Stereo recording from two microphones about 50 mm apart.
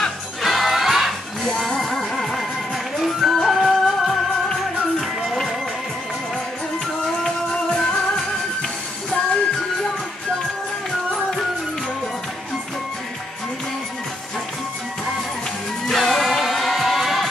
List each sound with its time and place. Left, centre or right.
0.4 s music: centre
5.2 s music: centre
7.2 s music: centre
15.9 s music: centre